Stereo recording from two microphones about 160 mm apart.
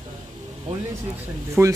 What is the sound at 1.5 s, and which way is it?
Speech, 20° right (ahead or behind).